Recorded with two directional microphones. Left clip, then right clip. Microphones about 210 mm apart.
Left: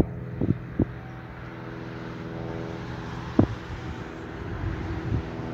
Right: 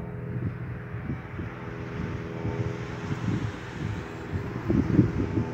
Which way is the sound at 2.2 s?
20° right (ahead or behind).